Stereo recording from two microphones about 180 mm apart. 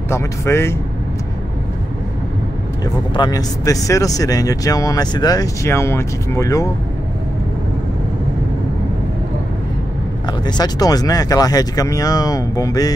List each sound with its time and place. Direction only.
0.1 s speech: 15° left (ahead or behind)
2.8 s speech: 20° left (ahead or behind)
10.2 s speech: 20° left (ahead or behind)